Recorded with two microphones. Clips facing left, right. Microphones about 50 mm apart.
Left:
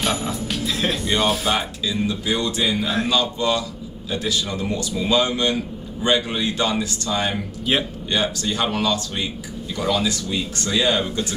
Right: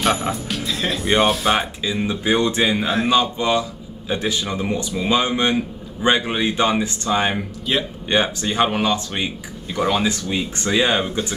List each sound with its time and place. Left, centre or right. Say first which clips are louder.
0.3 s speech: right 1 dB; centre
1.5 s a man's voice: right 3 dB; right
7.7 s speech: even; centre
8.1 s a man's voice: right 3 dB; right